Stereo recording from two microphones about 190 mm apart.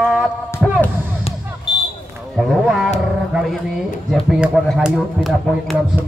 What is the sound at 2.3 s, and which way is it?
Roaring cats, centre (ahead or behind).